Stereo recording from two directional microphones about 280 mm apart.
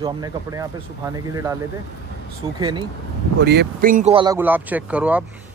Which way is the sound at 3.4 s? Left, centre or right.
Right.